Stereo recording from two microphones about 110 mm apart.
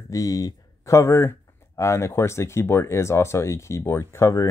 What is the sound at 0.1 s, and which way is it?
Speech, 30° left (ahead or behind).